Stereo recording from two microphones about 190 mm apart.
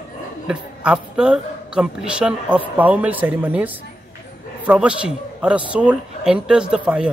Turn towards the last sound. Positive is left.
turn(degrees=-5)  # may be behind; listen again after turning